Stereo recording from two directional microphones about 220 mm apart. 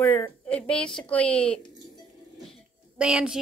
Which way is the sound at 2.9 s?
5° right (ahead or behind).